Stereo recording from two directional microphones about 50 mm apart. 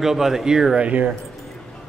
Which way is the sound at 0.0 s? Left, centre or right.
Centre.